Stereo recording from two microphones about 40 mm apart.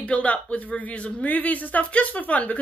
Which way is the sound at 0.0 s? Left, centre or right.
Left.